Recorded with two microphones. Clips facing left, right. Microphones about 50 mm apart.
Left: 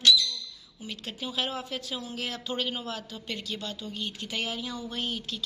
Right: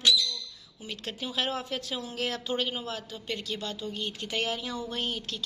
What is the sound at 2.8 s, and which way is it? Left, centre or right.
A woman's voice, right.